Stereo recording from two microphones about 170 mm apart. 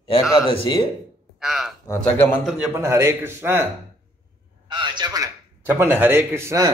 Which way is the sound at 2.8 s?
15° right (ahead or behind).